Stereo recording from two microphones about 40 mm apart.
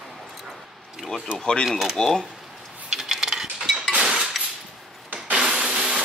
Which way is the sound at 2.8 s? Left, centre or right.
Centre.